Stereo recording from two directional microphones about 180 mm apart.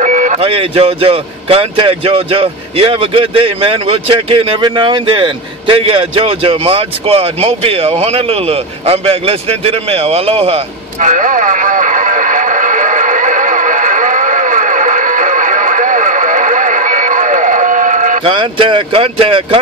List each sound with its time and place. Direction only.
0.0 s speech: 40° right (ahead or behind)
18.2 s speech: 30° right (ahead or behind)